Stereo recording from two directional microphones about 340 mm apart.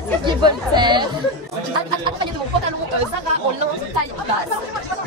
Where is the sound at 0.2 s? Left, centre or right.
Centre.